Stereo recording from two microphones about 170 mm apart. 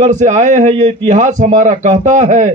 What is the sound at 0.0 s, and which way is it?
A man's voice, 45° right (ahead or behind).